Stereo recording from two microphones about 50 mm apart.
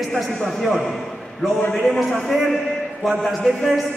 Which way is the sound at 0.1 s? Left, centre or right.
Centre.